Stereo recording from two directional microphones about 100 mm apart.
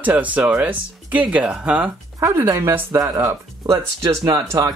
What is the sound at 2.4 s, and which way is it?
Speech, 25° right (ahead or behind).